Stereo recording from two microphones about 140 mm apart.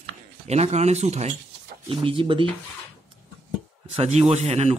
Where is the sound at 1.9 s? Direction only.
40° right (ahead or behind).